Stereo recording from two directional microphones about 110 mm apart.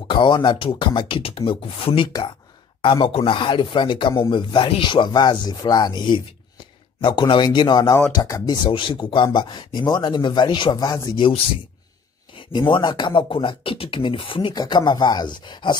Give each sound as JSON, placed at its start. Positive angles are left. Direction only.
{"t": 0.1, "sound": "speech", "side_deg": 45}
{"t": 8.6, "sound": "speech", "side_deg": 50}
{"t": 11.1, "sound": "speech", "side_deg": 50}
{"t": 14.5, "sound": "speech", "side_deg": 40}